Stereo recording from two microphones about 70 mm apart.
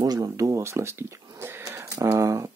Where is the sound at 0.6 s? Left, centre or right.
Right.